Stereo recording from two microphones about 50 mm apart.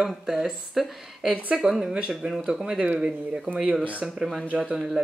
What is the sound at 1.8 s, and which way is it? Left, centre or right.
Speech, centre.